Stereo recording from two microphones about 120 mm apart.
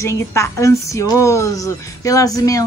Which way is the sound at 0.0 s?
25° left (ahead or behind).